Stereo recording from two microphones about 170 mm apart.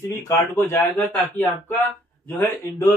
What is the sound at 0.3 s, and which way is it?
Speech, 15° left (ahead or behind).